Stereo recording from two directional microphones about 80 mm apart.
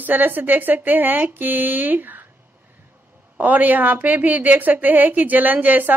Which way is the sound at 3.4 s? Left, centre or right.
Right.